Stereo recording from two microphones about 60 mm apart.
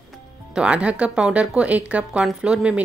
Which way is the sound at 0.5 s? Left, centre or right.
Centre.